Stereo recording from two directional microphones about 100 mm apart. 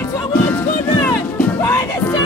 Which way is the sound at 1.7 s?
30° left (ahead or behind).